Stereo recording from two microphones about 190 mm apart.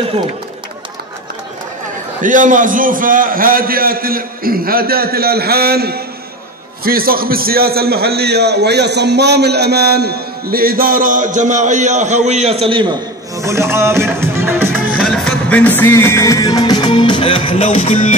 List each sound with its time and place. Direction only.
2.2 s a man's voice: 45° right (ahead or behind); by 12.9 s 25° right (ahead or behind)
13.4 s music: 15° right (ahead or behind)
15.0 s music: 5° left (ahead or behind); by 18.1 s 35° left (ahead or behind)